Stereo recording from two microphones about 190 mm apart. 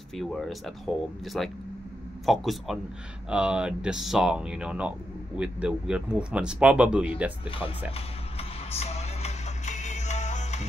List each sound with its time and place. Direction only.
0.1 s speech: centre (ahead or behind)
7.4 s speech: 30° left (ahead or behind)
7.9 s music: 30° left (ahead or behind)